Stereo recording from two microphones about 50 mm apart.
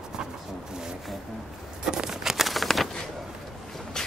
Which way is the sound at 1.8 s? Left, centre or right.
Centre.